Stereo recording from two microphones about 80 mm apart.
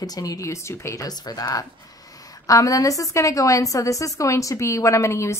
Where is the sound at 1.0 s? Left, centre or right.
Left.